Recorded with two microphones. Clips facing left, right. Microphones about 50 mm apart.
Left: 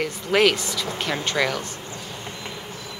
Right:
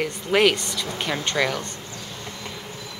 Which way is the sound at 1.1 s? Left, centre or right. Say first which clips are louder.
Even; centre.